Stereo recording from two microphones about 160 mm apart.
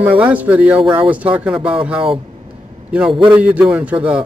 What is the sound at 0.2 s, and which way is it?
Speech, 10° right (ahead or behind).